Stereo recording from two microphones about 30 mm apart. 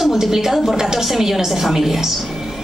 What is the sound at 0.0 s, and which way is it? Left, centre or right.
A woman's voice, centre.